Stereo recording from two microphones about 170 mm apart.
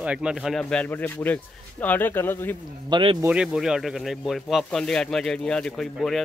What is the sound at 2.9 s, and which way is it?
Speech, 30° right (ahead or behind).